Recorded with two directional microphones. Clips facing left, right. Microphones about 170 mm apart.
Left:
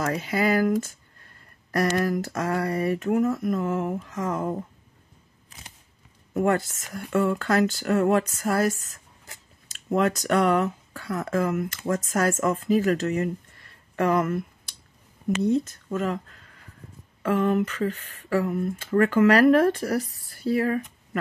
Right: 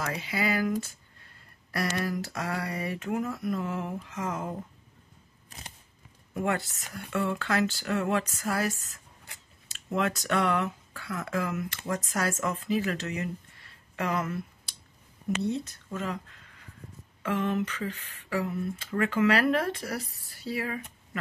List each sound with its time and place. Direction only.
0.0 s speech: 45° left (ahead or behind)
6.3 s speech: 45° left (ahead or behind)
13.9 s a sound: 45° left (ahead or behind)
15.4 s speech: 45° left (ahead or behind)